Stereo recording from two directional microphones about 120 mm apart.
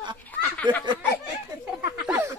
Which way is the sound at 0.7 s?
40° right (ahead or behind).